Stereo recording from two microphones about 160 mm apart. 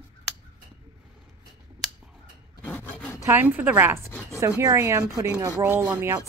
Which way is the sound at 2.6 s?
10° left (ahead or behind).